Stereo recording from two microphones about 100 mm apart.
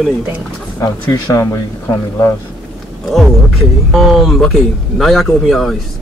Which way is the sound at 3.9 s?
5° left (ahead or behind).